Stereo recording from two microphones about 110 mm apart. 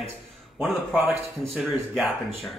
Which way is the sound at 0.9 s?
20° right (ahead or behind).